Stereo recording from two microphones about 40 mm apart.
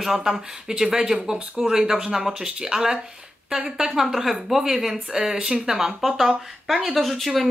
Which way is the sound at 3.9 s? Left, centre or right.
Centre.